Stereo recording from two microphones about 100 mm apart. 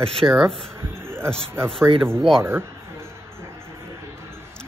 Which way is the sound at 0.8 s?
25° right (ahead or behind).